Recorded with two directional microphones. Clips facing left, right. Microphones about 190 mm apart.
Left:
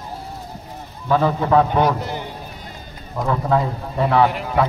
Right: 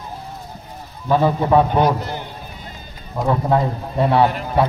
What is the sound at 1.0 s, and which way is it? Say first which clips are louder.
Speech: right 1 dB; 15° right (ahead or behind).